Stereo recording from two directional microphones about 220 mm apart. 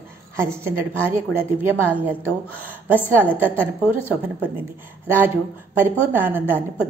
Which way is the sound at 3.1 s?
10° right (ahead or behind).